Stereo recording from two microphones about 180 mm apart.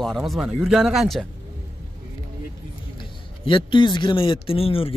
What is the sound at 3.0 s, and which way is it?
A man's voice, 25° left (ahead or behind).